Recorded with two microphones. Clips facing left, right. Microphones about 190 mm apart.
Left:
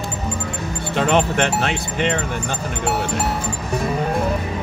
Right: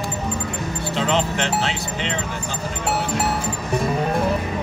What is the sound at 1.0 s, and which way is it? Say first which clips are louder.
Speech: left 5 dB; 55° left (ahead or behind).